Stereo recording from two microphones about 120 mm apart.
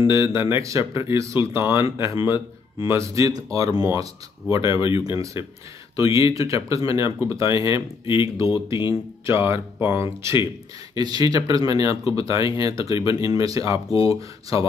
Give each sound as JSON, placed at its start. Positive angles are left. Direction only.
{"t": 0.1, "sound": "speech", "side_deg": -20}
{"t": 8.5, "sound": "speech", "side_deg": 45}
{"t": 9.2, "sound": "speech", "side_deg": -20}